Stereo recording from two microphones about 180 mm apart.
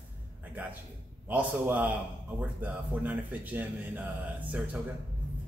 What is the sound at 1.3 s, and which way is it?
A man's voice, 10° right (ahead or behind).